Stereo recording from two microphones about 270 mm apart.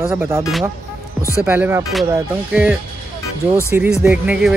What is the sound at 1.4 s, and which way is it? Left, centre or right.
Speech, centre.